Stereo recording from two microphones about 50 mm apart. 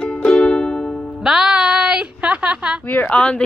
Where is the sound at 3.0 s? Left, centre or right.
Left.